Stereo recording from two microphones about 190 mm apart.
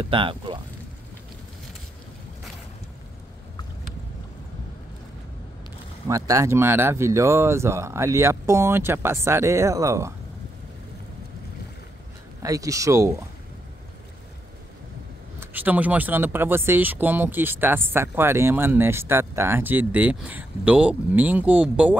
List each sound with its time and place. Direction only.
0.0 s speech: 25° right (ahead or behind)
6.0 s speech: 15° right (ahead or behind)
12.4 s speech: 15° right (ahead or behind)
15.4 s speech: 10° right (ahead or behind)